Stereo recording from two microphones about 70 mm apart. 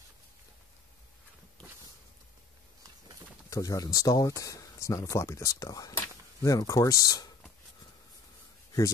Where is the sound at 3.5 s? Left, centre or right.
Left.